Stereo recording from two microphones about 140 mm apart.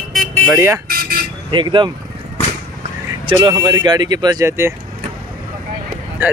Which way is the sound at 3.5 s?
25° right (ahead or behind).